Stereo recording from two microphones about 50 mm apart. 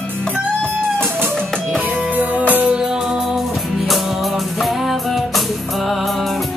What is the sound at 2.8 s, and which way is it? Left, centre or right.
Music, centre.